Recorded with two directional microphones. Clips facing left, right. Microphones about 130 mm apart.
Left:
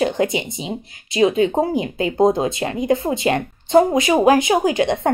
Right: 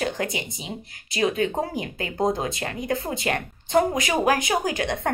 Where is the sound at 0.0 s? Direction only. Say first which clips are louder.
Left 8 dB; 20° left (ahead or behind).